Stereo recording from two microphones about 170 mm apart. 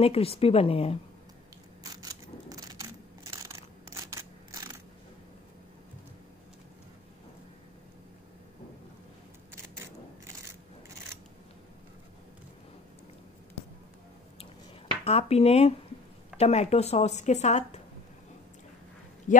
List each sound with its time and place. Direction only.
0.0 s speech: 35° left (ahead or behind)
1.8 s a sound: 20° right (ahead or behind)
15.0 s speech: 35° left (ahead or behind)
19.3 s speech: 45° left (ahead or behind)